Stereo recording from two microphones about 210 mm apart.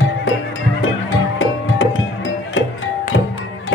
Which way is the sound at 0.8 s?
70° left (ahead or behind).